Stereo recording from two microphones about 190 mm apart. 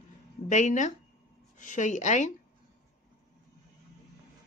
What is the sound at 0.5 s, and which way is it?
A woman's voice, 40° left (ahead or behind).